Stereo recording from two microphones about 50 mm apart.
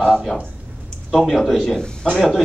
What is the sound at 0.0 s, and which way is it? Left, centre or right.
A man's voice, centre.